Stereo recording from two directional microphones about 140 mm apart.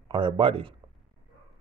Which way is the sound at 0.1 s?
35° right (ahead or behind).